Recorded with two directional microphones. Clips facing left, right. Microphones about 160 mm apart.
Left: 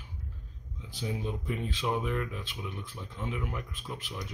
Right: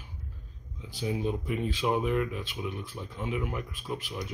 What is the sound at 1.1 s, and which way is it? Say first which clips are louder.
Speech: right 4 dB; 10° right (ahead or behind).